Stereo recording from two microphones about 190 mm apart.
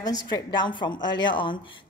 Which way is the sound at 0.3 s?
25° left (ahead or behind).